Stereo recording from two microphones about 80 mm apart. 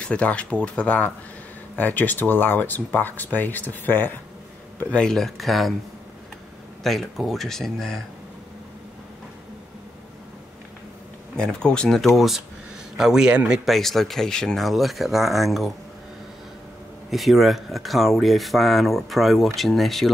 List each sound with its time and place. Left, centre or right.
0.0 s speech: centre
4.9 s speech: centre
6.8 s speech: centre
11.3 s a man's voice: centre
17.1 s speech: centre